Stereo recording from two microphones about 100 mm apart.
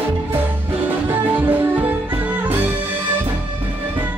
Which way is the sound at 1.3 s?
15° right (ahead or behind).